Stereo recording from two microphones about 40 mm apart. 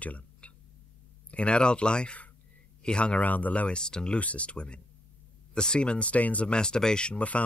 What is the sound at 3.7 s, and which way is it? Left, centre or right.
Speech, left.